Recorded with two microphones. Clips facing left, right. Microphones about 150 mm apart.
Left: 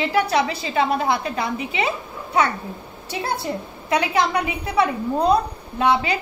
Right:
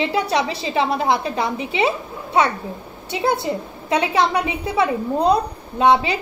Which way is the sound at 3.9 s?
30° right (ahead or behind).